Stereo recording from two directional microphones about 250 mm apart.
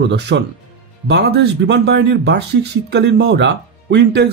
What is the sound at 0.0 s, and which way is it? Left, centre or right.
Speech, right.